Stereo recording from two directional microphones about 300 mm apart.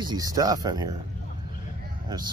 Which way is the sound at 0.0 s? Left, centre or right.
Centre.